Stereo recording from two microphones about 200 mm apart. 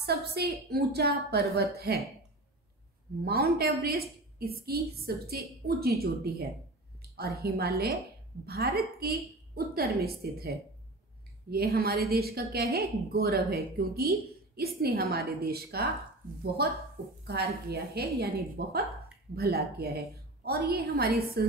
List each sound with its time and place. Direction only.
0.0 s a woman's voice: 55° right (ahead or behind)
3.3 s a woman's voice: 50° right (ahead or behind)
9.0 s a woman's voice: 50° right (ahead or behind)